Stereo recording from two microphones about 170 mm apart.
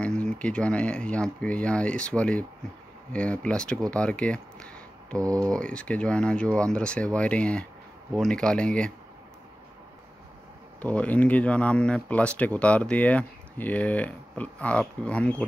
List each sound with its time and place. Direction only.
0.0 s speech: 5° left (ahead or behind)
3.9 s a sound: 5° left (ahead or behind)
5.2 s speech: 20° right (ahead or behind)
5.5 s speech: 5° left (ahead or behind)
10.8 s speech: 10° left (ahead or behind)